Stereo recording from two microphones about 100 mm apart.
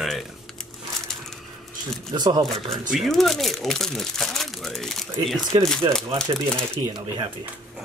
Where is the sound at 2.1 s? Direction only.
45° right (ahead or behind).